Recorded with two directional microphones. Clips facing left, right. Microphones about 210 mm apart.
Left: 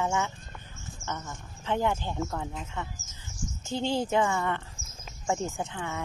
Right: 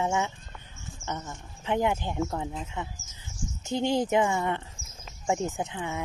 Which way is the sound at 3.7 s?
20° right (ahead or behind).